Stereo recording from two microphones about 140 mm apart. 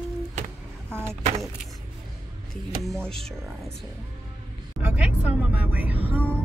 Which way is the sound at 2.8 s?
5° left (ahead or behind).